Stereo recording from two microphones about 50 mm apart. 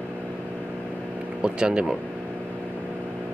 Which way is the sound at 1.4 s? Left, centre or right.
Centre.